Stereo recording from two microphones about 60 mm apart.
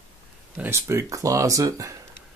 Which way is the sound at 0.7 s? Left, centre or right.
Right.